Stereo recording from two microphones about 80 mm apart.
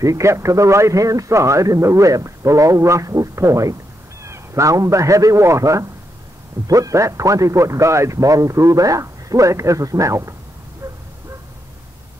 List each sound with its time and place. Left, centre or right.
0.0 s a man's voice: right
10.8 s dog: right